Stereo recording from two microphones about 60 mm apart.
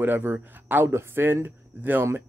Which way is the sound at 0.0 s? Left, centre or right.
Right.